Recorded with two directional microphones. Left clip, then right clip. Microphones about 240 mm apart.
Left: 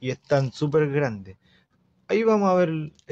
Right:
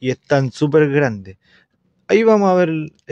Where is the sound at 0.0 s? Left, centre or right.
Right.